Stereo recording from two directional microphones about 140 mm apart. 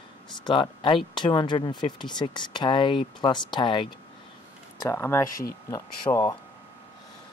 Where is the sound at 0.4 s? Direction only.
35° left (ahead or behind).